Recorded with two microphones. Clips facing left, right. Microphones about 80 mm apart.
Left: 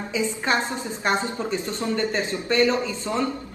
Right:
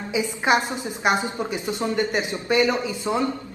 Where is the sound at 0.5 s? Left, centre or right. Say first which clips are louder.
Right 6 dB; centre.